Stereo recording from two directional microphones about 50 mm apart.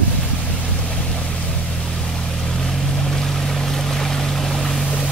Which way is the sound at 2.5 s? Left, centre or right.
Centre.